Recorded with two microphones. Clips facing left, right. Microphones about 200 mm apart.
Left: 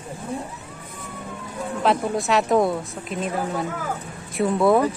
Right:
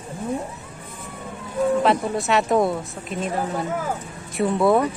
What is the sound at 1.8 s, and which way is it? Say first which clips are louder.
A woman's voice: right 1 dB; centre (ahead or behind).